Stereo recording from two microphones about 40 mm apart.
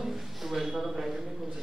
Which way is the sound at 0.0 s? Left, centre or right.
Centre.